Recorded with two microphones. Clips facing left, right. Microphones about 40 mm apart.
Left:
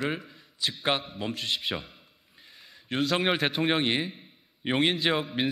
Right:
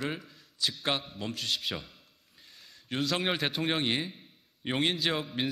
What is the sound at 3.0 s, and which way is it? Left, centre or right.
A man's voice, centre.